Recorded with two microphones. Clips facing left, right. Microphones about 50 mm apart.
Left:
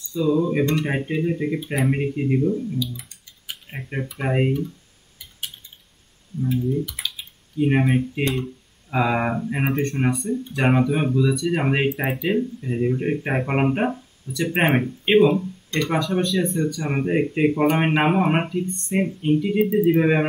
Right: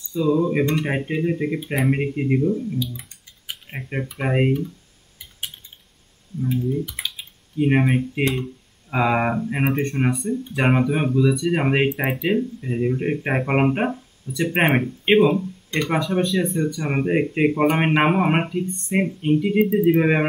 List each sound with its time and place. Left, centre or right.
0.1 s speech: centre
2.7 s a sound: centre
4.2 s speech: centre
6.7 s speech: centre